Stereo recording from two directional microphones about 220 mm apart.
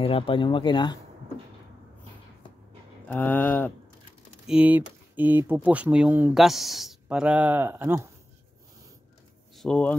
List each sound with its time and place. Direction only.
0.0 s speech: 25° left (ahead or behind)
3.1 s speech: 10° left (ahead or behind)
4.5 s speech: 5° right (ahead or behind)
9.6 s speech: 5° left (ahead or behind)